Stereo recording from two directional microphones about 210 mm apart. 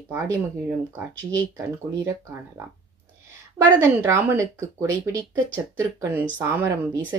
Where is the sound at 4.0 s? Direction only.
10° right (ahead or behind).